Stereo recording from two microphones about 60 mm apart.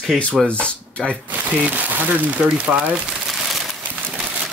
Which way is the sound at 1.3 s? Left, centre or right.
Right.